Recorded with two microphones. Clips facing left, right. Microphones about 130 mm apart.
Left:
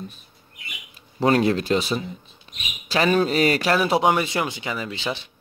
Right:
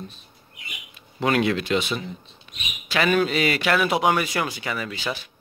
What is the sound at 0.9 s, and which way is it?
Speech, 35° left (ahead or behind).